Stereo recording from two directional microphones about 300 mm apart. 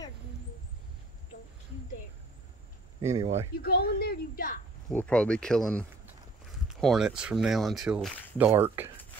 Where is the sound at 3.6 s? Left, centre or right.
Left.